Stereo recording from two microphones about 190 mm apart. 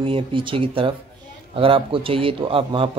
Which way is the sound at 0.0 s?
25° right (ahead or behind).